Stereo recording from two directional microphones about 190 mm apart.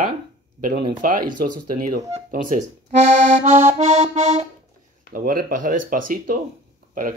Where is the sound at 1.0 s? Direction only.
45° right (ahead or behind).